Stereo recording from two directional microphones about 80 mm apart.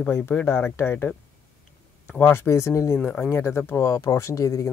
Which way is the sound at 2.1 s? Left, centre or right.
Left.